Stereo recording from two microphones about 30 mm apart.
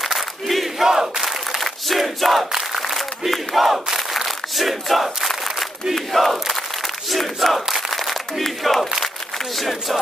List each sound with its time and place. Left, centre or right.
0.0 s crowd: centre
0.8 s battle cry: centre
1.6 s crowd: centre
2.7 s a sound: centre
3.7 s battle cry: centre